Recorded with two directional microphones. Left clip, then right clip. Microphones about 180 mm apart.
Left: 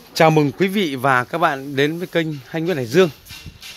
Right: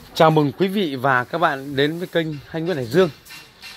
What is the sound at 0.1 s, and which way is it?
A man's voice, 15° left (ahead or behind).